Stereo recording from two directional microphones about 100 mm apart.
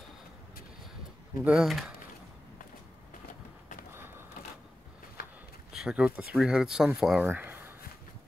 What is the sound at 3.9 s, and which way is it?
Mechanisms, 25° right (ahead or behind).